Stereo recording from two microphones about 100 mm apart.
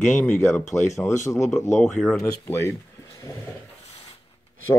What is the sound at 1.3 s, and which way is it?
Speech, 30° left (ahead or behind).